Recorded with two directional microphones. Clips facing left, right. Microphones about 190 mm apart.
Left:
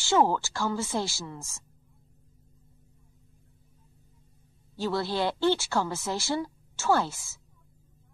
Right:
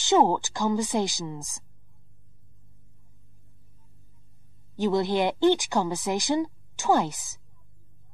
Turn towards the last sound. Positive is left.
turn(degrees=-20)  # may be behind; listen again after turning